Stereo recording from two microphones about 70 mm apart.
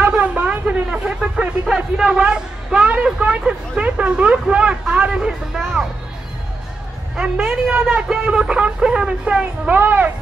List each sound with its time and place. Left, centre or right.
0.2 s a sound: centre
4.6 s speech: centre
5.6 s a woman's voice: centre
7.2 s a woman's voice: centre; by 10.1 s right